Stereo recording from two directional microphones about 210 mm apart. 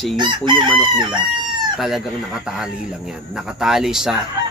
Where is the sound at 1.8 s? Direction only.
Centre (ahead or behind).